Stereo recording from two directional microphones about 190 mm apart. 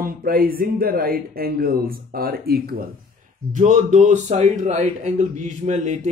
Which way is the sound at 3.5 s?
40° right (ahead or behind).